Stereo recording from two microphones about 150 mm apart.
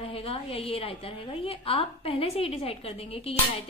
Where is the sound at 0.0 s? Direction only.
40° left (ahead or behind).